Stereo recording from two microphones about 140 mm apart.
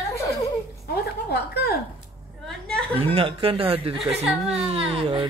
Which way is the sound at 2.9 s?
40° right (ahead or behind).